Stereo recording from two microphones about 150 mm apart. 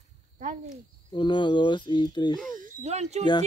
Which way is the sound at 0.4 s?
55° right (ahead or behind).